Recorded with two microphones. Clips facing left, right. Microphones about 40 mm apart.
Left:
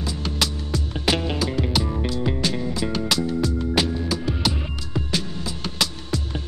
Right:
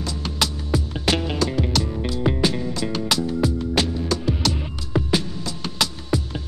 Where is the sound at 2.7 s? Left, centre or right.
Centre.